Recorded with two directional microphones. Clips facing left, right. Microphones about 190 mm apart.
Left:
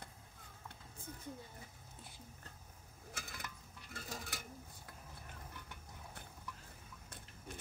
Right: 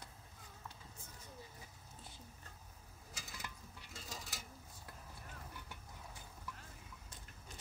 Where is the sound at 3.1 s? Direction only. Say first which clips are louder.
Left 1 dB; 55° left (ahead or behind).